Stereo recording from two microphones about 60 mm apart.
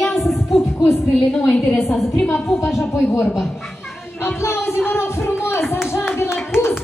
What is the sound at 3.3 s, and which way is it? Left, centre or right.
Cat, centre.